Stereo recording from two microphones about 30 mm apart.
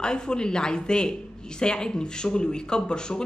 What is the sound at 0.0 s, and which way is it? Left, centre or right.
Speech, left.